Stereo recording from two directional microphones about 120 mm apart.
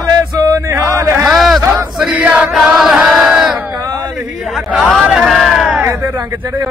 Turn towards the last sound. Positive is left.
turn(degrees=0)  # may be behind; listen again after turning